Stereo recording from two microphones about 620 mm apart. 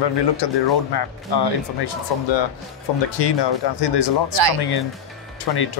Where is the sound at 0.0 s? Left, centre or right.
Left.